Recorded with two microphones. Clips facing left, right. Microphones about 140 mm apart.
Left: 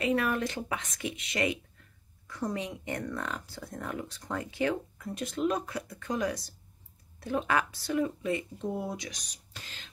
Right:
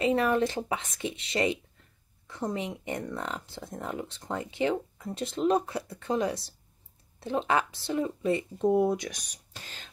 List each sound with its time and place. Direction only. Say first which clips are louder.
0.0 s speech: right 4 dB; 25° right (ahead or behind)
8.6 s speech: right 12 dB; 55° right (ahead or behind)